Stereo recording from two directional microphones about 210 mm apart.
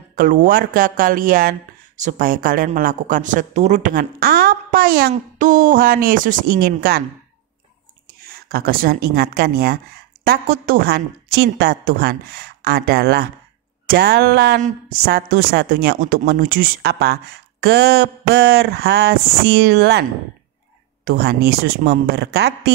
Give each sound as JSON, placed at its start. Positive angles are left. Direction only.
{"t": 0.1, "sound": "speech", "side_deg": -40}
{"t": 8.2, "sound": "a woman's voice", "side_deg": -45}